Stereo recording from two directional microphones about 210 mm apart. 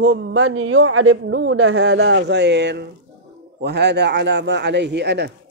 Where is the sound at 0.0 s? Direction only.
60° right (ahead or behind).